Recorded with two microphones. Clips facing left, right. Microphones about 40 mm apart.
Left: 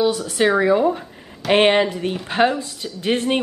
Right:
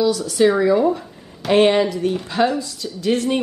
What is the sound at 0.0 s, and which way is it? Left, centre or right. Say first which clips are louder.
A woman's voice: right 2 dB; left.